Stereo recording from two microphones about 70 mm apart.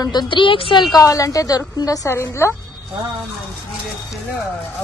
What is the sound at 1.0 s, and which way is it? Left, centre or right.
A woman's voice, left.